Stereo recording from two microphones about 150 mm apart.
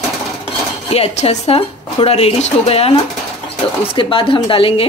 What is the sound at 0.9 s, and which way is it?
A woman's voice, 45° left (ahead or behind).